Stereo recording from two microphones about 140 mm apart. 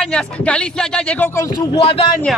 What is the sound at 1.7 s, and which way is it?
Speech, 40° left (ahead or behind).